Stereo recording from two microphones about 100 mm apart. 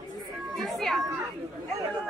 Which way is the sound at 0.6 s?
Centre (ahead or behind).